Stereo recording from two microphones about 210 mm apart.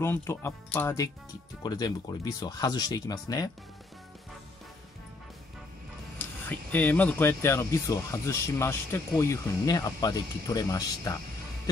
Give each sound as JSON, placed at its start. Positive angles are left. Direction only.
{"t": 0.0, "sound": "speech", "side_deg": 10}
{"t": 6.1, "sound": "speech", "side_deg": 10}